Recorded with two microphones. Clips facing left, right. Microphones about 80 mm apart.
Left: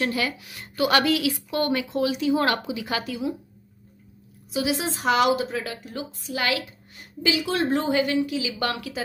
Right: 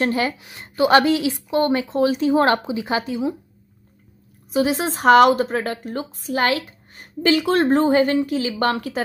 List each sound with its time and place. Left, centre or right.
0.0 s a woman's voice: right
4.5 s speech: right